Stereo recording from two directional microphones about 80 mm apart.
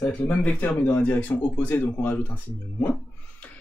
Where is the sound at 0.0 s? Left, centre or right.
Centre.